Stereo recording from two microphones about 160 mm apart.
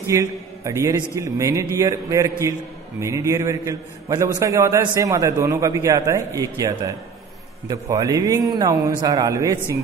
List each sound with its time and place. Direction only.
0.0 s a man's voice: 20° right (ahead or behind)